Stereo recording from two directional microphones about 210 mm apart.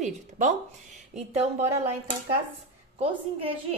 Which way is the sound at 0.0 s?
35° right (ahead or behind).